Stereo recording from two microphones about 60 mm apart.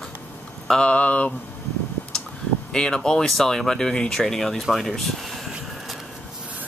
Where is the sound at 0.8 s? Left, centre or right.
Left.